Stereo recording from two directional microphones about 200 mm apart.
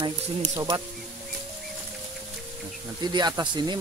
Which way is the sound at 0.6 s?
15° right (ahead or behind).